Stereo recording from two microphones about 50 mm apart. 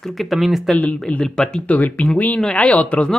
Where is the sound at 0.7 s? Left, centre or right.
Left.